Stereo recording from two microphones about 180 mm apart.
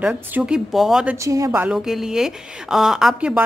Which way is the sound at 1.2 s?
15° right (ahead or behind).